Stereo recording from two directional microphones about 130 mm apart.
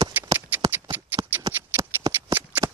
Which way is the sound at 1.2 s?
25° right (ahead or behind).